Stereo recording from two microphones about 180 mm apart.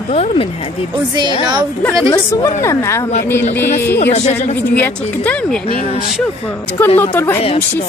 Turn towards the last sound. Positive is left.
turn(degrees=10)  # may be behind; listen again after turning